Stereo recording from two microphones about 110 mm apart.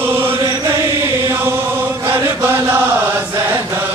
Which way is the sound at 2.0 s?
20° right (ahead or behind).